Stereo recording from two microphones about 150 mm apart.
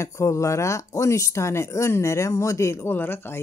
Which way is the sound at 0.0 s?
20° left (ahead or behind).